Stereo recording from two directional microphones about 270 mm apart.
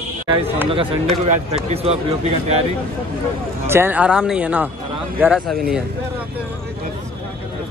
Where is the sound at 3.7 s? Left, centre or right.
Centre.